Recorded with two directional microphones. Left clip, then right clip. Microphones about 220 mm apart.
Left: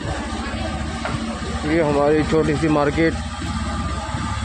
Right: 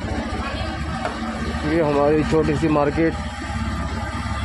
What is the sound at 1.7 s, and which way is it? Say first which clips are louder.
Speech: left 1 dB; centre (ahead or behind).